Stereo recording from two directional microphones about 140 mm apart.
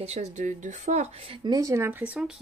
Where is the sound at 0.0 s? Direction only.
50° right (ahead or behind).